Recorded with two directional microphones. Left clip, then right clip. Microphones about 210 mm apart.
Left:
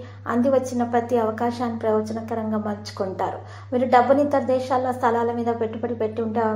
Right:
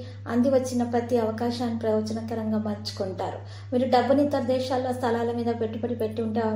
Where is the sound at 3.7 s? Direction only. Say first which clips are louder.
Left 4 dB; 20° left (ahead or behind).